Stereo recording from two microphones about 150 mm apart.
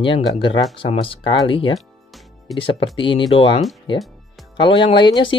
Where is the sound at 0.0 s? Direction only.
35° left (ahead or behind).